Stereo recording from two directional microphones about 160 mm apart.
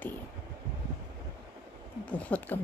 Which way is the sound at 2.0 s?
10° left (ahead or behind).